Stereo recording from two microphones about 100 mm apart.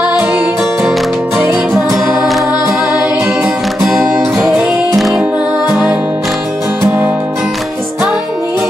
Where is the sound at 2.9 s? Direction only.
25° right (ahead or behind).